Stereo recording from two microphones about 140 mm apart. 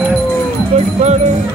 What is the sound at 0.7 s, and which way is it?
Music, 50° right (ahead or behind).